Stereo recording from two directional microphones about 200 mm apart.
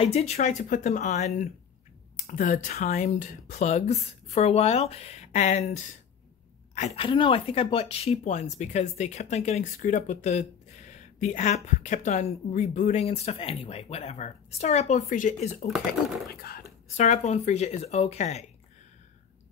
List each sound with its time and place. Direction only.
0.0 s a woman's voice: 35° left (ahead or behind)
16.3 s whispering: 50° left (ahead or behind)
16.9 s a woman's voice: 35° left (ahead or behind)